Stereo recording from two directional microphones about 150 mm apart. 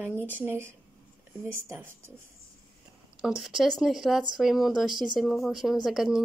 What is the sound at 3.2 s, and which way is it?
A woman's voice, 5° right (ahead or behind).